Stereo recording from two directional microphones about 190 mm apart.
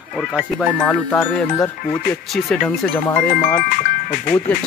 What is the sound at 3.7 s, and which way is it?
Speech, 50° left (ahead or behind).